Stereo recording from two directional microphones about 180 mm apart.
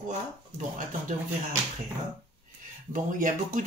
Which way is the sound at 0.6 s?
45° right (ahead or behind).